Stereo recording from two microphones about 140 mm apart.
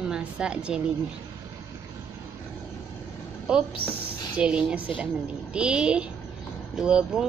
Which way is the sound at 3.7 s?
40° left (ahead or behind).